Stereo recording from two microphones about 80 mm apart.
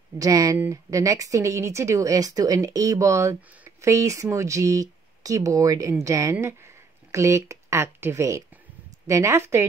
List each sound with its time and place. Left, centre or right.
0.2 s speech: right